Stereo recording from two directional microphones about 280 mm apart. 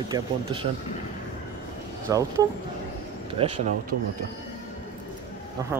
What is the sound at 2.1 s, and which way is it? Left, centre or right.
Speech, centre.